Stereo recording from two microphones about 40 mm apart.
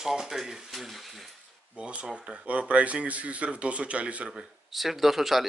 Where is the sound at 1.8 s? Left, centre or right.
Right.